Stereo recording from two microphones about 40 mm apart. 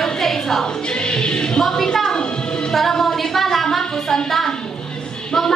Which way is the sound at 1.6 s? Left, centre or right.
Centre.